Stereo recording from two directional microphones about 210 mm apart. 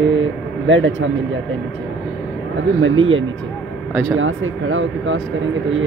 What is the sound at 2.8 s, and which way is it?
Speech, 70° right (ahead or behind).